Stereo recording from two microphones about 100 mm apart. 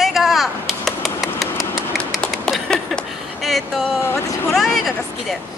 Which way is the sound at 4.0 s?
25° left (ahead or behind).